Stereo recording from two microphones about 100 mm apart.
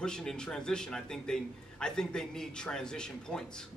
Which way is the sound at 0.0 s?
5° left (ahead or behind).